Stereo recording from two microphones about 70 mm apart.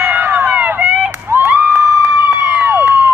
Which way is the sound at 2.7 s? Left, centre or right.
Right.